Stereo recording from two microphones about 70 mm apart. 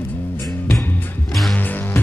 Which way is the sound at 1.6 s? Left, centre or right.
Left.